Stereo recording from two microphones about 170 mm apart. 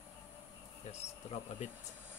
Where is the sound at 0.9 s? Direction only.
40° left (ahead or behind).